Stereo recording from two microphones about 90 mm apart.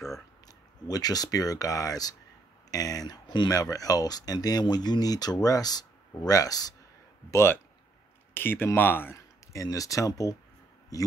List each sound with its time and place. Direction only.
0.8 s speech: 45° left (ahead or behind)
7.2 s speech: 30° left (ahead or behind)
9.5 s speech: 40° left (ahead or behind)